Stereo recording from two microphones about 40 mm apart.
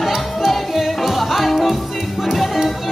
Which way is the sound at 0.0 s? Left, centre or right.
Centre.